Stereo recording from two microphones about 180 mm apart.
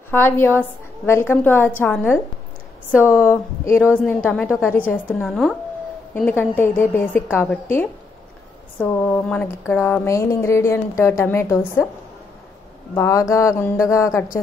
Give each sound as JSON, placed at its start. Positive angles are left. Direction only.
{"t": 0.1, "sound": "speech", "side_deg": 10}
{"t": 12.9, "sound": "speech", "side_deg": 15}